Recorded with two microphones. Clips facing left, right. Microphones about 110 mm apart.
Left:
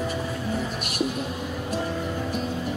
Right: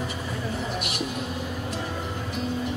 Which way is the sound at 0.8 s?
45° left (ahead or behind).